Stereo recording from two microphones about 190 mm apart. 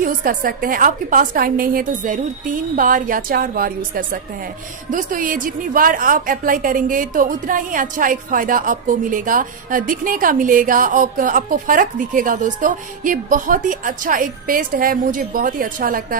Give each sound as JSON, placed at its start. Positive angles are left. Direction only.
{"t": 0.0, "sound": "a woman's voice", "side_deg": -45}